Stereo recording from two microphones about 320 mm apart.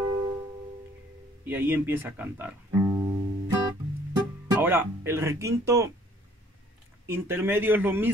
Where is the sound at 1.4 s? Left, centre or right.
Centre.